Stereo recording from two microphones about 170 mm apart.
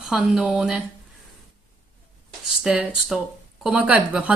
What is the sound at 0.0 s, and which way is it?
Speech, centre (ahead or behind).